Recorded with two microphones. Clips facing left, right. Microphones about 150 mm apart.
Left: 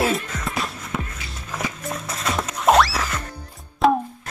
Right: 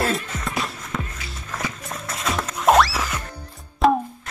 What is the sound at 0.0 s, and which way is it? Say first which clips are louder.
Music: left 2 dB; centre (ahead or behind).